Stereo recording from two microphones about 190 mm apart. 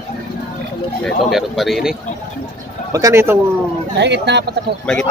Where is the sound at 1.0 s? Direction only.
Centre (ahead or behind).